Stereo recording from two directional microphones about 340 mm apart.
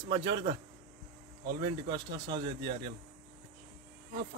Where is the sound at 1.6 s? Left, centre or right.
Centre.